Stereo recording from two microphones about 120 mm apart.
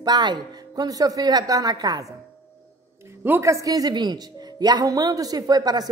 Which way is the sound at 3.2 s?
20° right (ahead or behind).